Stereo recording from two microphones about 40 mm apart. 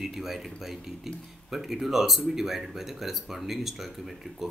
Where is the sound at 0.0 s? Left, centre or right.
Centre.